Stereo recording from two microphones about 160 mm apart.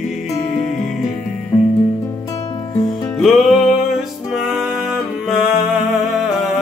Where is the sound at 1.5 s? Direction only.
30° left (ahead or behind).